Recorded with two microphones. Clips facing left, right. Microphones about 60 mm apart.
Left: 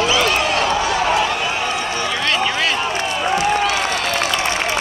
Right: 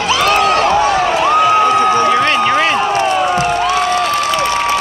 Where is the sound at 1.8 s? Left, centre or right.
Right.